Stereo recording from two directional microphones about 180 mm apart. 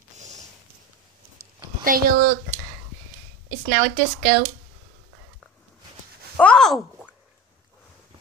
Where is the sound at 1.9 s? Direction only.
55° right (ahead or behind).